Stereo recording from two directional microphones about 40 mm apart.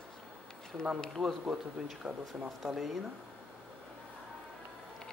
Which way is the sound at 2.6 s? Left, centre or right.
Centre.